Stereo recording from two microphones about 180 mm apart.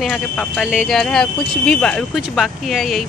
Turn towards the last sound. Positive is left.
turn(degrees=0)  # may be behind; listen again after turning